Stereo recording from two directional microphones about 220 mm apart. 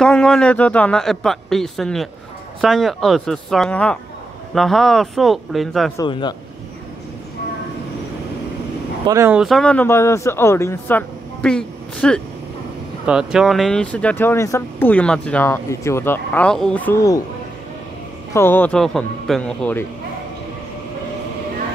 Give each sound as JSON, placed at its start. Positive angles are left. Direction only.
{"t": 0.0, "sound": "speech", "side_deg": 5}
{"t": 5.9, "sound": "speech", "side_deg": 20}
{"t": 9.0, "sound": "speech", "side_deg": -15}
{"t": 18.3, "sound": "speech", "side_deg": 10}